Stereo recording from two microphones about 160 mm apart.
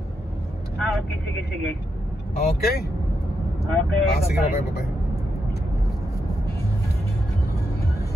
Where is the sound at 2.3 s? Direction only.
70° left (ahead or behind).